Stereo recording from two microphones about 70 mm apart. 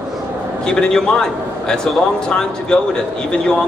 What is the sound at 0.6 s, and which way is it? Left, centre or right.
Speech, centre.